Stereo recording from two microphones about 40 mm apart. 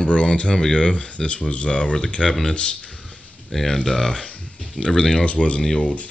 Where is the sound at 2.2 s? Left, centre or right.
Centre.